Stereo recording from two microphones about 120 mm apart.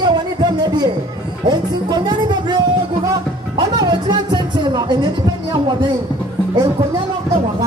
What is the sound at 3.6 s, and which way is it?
Music, 35° right (ahead or behind).